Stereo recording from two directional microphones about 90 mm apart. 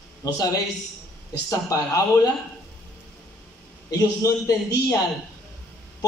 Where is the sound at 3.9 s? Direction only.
40° left (ahead or behind).